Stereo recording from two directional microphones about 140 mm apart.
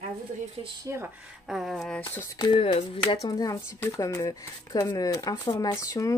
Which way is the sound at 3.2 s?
25° left (ahead or behind).